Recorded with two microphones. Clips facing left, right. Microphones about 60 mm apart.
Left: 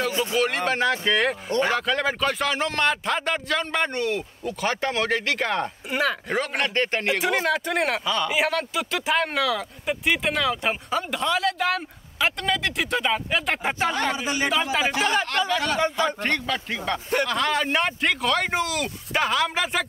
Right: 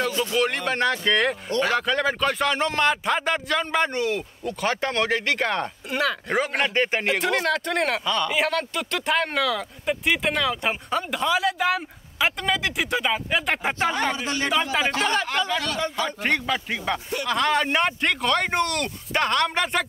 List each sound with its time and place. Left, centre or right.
0.1 s a sound: centre
0.7 s speech: centre
7.1 s speech: centre
14.2 s a man's voice: centre
14.5 s speech: centre
15.6 s a man's voice: left
16.2 s speech: centre